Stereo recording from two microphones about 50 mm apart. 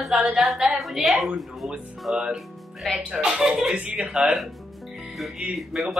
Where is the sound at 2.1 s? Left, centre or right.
Centre.